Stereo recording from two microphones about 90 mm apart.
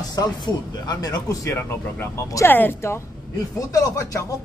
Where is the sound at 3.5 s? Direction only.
40° left (ahead or behind).